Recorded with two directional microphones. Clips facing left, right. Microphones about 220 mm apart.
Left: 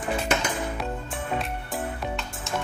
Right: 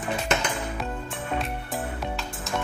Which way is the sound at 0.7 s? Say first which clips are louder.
Left 1 dB; centre (ahead or behind).